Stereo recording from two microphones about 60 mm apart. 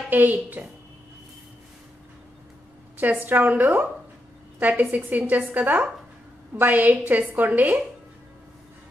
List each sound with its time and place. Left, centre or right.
0.1 s a woman's voice: right
3.0 s a woman's voice: right